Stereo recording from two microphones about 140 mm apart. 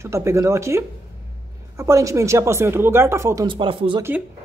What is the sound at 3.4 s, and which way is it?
Speech, 35° right (ahead or behind).